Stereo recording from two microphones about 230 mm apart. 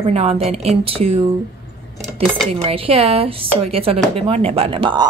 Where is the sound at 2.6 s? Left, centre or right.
Right.